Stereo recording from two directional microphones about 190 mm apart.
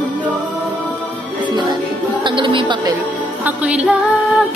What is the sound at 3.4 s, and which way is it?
Music, 5° right (ahead or behind).